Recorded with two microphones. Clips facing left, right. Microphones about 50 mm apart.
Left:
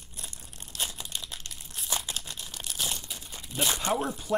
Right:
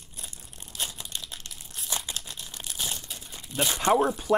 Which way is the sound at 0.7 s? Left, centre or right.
Centre.